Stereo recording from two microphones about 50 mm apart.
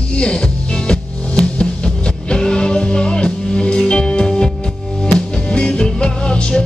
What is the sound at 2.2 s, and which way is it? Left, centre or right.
Music, centre.